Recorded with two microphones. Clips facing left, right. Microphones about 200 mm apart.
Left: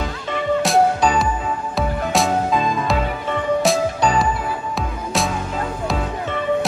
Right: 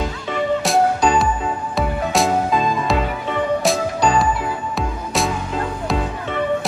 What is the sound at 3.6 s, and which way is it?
Music, centre (ahead or behind).